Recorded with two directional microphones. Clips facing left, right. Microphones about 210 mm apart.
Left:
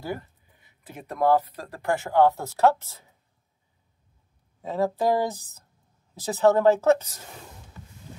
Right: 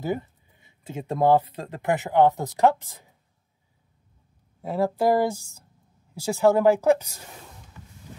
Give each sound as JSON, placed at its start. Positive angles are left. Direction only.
{"t": 0.0, "sound": "speech", "side_deg": -20}
{"t": 4.6, "sound": "speech", "side_deg": -10}